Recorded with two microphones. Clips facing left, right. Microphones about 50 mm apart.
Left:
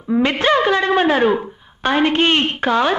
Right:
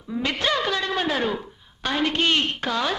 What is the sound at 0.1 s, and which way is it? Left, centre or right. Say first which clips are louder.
Speech: left 9 dB; left.